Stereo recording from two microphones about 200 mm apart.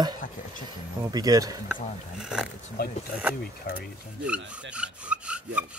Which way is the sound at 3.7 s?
45° left (ahead or behind).